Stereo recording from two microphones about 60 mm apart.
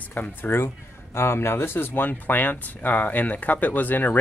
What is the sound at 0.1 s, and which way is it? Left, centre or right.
Speech, left.